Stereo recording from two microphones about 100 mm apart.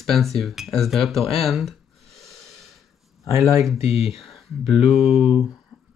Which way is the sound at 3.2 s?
30° right (ahead or behind).